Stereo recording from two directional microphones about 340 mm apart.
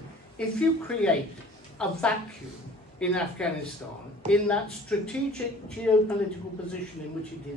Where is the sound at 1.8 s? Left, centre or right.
Centre.